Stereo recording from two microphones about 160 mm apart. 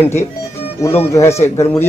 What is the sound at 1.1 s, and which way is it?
Speech, 20° left (ahead or behind).